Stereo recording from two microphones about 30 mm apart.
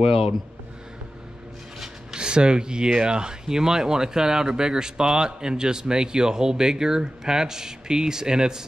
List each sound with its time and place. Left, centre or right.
2.1 s speech: right